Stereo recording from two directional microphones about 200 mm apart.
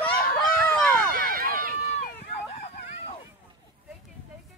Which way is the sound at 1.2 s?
45° right (ahead or behind).